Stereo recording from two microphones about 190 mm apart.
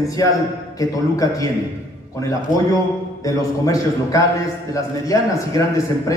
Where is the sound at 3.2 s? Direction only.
20° left (ahead or behind).